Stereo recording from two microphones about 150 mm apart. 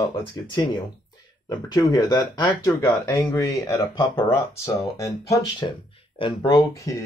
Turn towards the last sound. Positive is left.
turn(degrees=25)  # may be behind; listen again after turning